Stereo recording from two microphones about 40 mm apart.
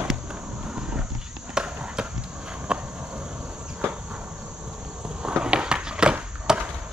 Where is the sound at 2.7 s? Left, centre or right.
Right.